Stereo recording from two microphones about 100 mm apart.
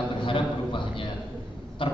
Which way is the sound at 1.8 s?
60° left (ahead or behind).